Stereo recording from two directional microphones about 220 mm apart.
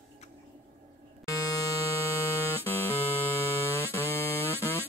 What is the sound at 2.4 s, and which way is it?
Music, 10° left (ahead or behind).